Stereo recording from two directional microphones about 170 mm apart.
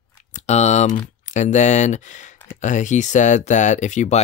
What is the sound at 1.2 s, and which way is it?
Speech, 45° left (ahead or behind).